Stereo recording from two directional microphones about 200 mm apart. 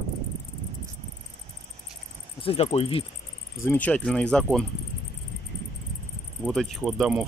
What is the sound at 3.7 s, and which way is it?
Speech, 5° left (ahead or behind).